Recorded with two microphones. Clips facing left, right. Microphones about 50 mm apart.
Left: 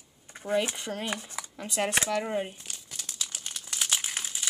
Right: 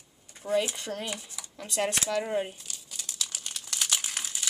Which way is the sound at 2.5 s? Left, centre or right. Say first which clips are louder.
Left 1 dB; left.